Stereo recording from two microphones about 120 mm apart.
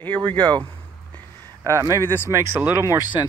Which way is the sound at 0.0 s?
40° right (ahead or behind).